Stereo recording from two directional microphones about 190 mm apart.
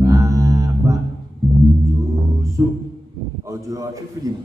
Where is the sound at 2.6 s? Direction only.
15° right (ahead or behind).